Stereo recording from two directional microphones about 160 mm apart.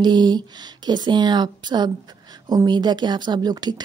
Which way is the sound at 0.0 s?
25° right (ahead or behind).